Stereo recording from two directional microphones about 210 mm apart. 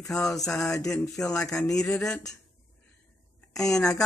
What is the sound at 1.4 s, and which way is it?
Speech, 15° left (ahead or behind).